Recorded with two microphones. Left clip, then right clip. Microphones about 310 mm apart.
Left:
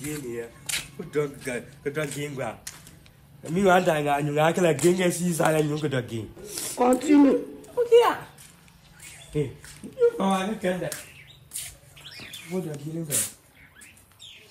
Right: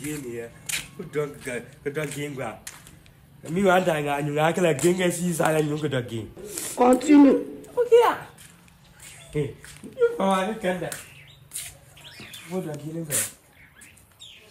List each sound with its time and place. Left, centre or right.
0.0 s a man's voice: centre
9.9 s a sound: centre
10.6 s a man's voice: centre
12.0 s bird: centre
12.4 s speech: centre